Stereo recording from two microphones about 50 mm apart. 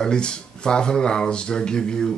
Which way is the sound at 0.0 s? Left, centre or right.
Centre.